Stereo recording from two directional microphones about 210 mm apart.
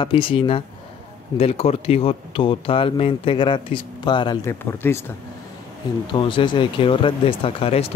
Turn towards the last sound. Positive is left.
turn(degrees=25)  # may be behind; listen again after turning